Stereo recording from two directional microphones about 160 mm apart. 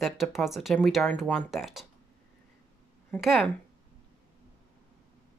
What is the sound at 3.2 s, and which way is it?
Speech, centre (ahead or behind).